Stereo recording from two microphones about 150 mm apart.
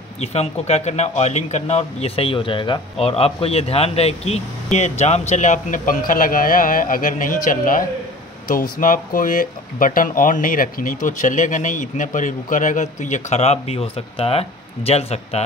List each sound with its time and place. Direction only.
0.2 s speech: 45° left (ahead or behind)